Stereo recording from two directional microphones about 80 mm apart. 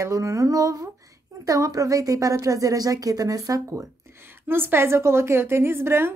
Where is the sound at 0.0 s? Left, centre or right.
Right.